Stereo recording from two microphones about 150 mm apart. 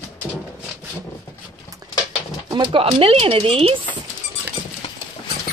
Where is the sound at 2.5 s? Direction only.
35° right (ahead or behind).